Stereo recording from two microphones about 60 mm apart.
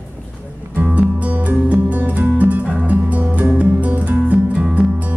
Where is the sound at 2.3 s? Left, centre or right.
Right.